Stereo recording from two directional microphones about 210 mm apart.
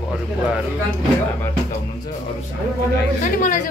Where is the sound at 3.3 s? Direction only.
40° left (ahead or behind).